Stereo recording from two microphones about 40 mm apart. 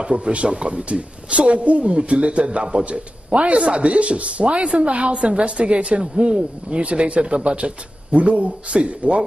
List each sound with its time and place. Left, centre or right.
0.0 s speech: right